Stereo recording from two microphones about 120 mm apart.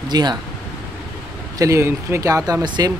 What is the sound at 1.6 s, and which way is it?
Speech, 25° right (ahead or behind).